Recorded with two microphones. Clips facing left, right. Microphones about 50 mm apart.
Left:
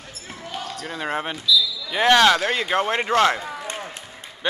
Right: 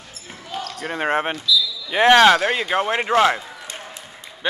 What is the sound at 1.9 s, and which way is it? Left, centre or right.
Speech, right.